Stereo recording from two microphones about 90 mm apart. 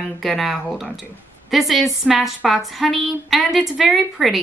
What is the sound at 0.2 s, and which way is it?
A woman's voice, centre (ahead or behind).